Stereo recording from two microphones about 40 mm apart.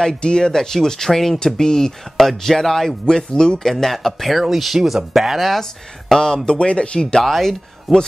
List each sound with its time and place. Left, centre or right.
0.2 s speech: centre
3.1 s speech: centre
3.6 s speech: centre
6.1 s speech: centre
7.2 s speech: centre